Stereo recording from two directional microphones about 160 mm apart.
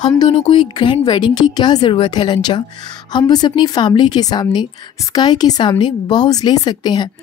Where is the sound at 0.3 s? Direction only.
35° left (ahead or behind).